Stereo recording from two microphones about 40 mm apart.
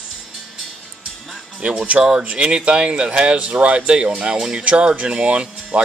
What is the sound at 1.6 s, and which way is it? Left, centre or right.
Speech, right.